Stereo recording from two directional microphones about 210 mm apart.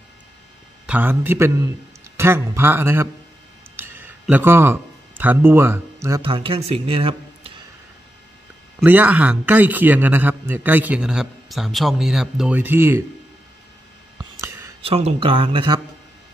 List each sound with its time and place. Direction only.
0.8 s a man's voice: 10° right (ahead or behind)
3.7 s a sound: 10° right (ahead or behind)
6.2 s speech: 25° right (ahead or behind)
8.7 s a man's voice: 10° right (ahead or behind)
14.8 s speech: 30° right (ahead or behind)